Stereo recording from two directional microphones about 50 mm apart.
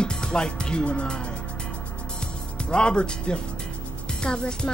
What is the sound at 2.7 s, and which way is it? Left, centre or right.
Speech, centre.